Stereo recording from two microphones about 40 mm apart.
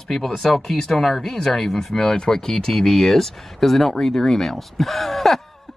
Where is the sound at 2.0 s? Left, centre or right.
Left.